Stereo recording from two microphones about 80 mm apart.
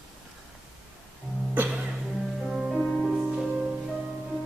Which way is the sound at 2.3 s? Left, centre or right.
Centre.